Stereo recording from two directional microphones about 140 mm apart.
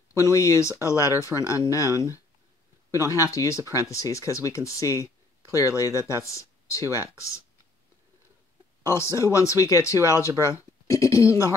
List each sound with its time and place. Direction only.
0.1 s speech: 20° left (ahead or behind)
8.8 s speech: 20° left (ahead or behind)